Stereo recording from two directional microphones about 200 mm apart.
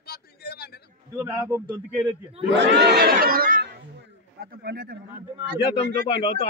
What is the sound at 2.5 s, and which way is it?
Crowd, 60° right (ahead or behind).